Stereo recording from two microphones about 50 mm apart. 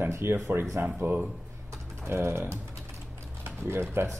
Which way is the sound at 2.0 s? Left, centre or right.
Right.